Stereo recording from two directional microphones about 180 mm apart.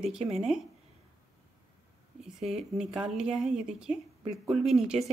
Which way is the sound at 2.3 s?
40° right (ahead or behind).